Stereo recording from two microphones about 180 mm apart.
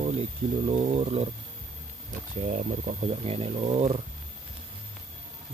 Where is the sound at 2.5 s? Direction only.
45° right (ahead or behind).